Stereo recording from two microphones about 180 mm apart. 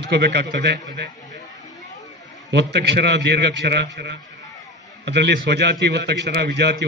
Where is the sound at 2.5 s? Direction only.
70° right (ahead or behind).